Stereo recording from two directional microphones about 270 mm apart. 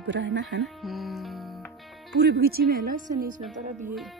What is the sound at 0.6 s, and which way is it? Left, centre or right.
Music, centre.